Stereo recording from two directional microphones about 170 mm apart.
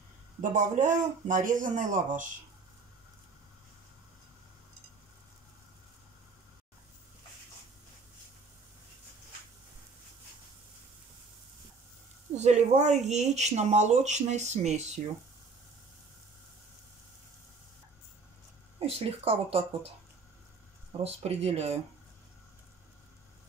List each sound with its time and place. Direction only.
0.4 s speech: 50° right (ahead or behind)
12.4 s speech: 40° right (ahead or behind)
18.8 s speech: 35° right (ahead or behind)
21.0 s speech: 35° right (ahead or behind)